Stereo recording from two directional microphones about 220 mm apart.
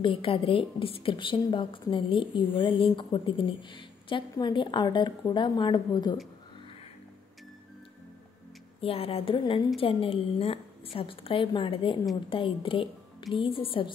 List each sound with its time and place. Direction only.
0.0 s a woman's voice: 25° left (ahead or behind)
8.8 s a woman's voice: 25° left (ahead or behind)